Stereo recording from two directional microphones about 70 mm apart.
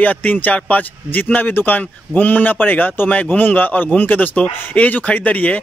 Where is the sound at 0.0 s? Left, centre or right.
Left.